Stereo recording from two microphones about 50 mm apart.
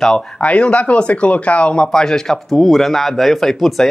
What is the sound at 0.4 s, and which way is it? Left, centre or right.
Speech, left.